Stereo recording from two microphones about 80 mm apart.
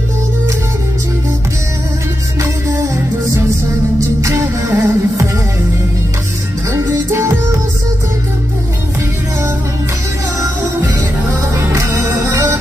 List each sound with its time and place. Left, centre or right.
4.0 s music: right
6.7 s music: right
11.6 s music: right